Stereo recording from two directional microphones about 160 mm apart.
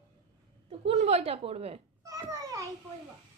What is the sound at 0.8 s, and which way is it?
Speech, 40° right (ahead or behind).